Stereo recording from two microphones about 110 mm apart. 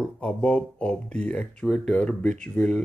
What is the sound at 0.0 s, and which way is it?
Speech, 10° left (ahead or behind).